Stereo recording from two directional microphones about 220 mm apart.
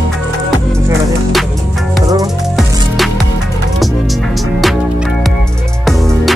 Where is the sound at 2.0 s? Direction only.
15° right (ahead or behind).